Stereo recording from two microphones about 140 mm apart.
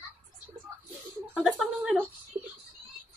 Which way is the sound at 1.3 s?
5° left (ahead or behind).